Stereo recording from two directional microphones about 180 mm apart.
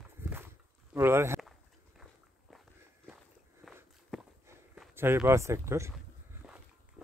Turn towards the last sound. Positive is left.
turn(degrees=-5)  # may be behind; listen again after turning